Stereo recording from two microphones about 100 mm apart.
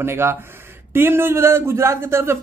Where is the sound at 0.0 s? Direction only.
25° right (ahead or behind).